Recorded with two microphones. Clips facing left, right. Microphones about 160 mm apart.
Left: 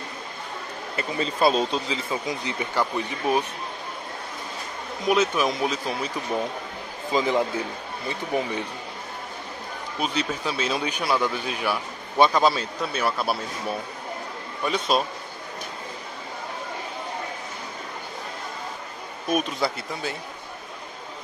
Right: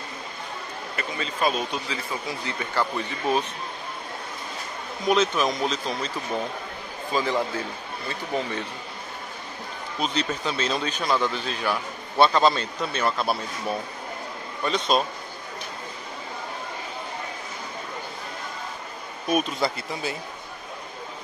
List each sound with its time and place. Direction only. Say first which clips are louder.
0.9 s speech: left 4 dB; 30° left (ahead or behind); by 3.4 s 15° left (ahead or behind)
5.0 s speech: even; 5° left (ahead or behind)
9.9 s speech: even; 10° left (ahead or behind)
14.6 s speech: even; 5° left (ahead or behind)
19.2 s speech: right 1 dB; 5° right (ahead or behind)